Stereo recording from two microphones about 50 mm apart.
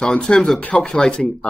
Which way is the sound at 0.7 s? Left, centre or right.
Centre.